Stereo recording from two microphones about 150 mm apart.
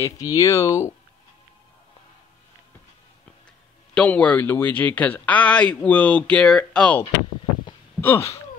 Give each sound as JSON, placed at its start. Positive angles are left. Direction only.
{"t": 0.0, "sound": "speech", "side_deg": 25}
{"t": 3.9, "sound": "speech", "side_deg": 10}
{"t": 8.0, "sound": "a sound", "side_deg": 15}